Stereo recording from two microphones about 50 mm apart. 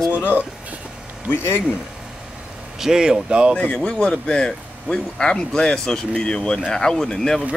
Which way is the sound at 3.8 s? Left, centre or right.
Left.